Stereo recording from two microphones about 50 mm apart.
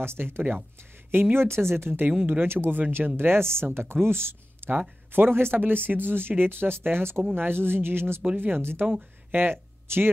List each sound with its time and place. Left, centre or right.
0.0 s speech: right
3.2 s speech: right
4.6 s speech: right